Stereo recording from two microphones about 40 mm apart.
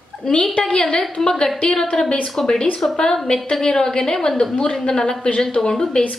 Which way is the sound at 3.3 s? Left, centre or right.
Left.